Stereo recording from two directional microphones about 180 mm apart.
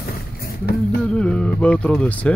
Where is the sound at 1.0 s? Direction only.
5° left (ahead or behind).